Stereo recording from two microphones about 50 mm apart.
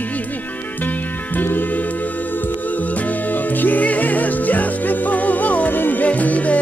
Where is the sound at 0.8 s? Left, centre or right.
Left.